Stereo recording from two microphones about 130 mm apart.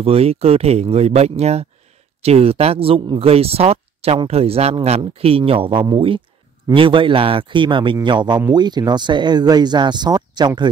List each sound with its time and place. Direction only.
0.0 s speech: 50° right (ahead or behind); by 10.7 s 35° right (ahead or behind)